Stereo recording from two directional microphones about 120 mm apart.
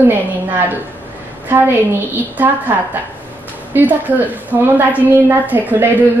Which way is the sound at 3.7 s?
15° right (ahead or behind).